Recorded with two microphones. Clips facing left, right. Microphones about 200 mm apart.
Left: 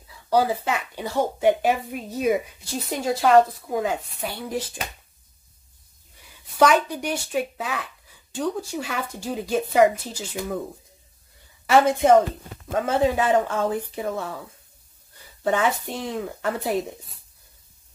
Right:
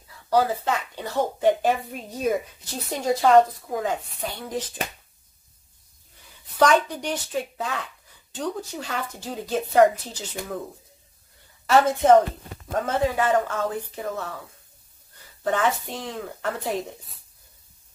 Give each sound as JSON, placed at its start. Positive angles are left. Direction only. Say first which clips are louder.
{"t": 0.3, "sound": "speech", "louder": "left 1 dB", "side_deg": 10}
{"t": 6.6, "sound": "speech", "louder": "left 1 dB", "side_deg": 10}
{"t": 11.6, "sound": "speech", "louder": "left 1 dB", "side_deg": 15}
{"t": 15.4, "sound": "speech", "louder": "left 1 dB", "side_deg": 10}